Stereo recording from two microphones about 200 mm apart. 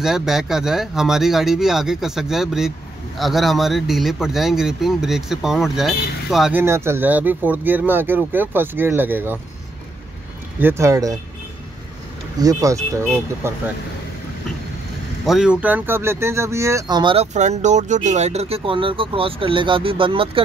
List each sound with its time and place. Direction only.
0.0 s speech: centre (ahead or behind)
6.6 s speech: 15° right (ahead or behind)
10.6 s speech: 15° right (ahead or behind)
12.4 s speech: 20° right (ahead or behind)
15.2 s speech: 5° right (ahead or behind); by 20.4 s 25° right (ahead or behind)